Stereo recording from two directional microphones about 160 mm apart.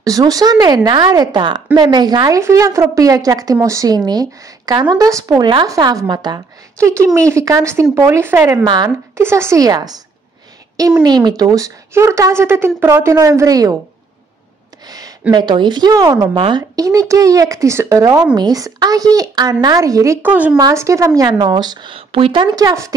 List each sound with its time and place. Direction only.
0.0 s speech: 20° right (ahead or behind)
14.9 s a sound: 25° right (ahead or behind)
15.3 s speech: 30° right (ahead or behind)